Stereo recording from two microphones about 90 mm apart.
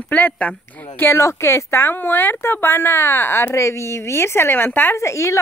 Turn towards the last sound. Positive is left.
turn(degrees=35)  # may be behind; listen again after turning